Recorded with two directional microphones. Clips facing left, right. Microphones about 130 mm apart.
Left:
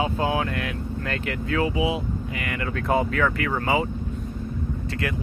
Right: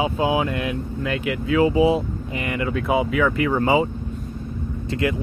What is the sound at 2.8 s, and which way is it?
Speech, 10° right (ahead or behind).